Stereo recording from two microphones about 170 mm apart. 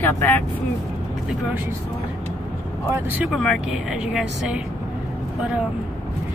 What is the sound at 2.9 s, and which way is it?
Speech, 10° right (ahead or behind).